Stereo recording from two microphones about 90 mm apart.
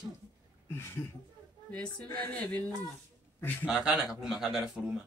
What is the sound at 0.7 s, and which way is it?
Speech, 25° left (ahead or behind).